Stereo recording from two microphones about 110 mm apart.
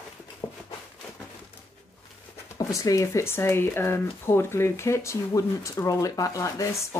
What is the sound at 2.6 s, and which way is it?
Speech, 30° left (ahead or behind).